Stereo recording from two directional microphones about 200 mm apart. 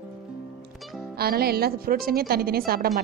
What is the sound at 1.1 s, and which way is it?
Speech, 50° right (ahead or behind).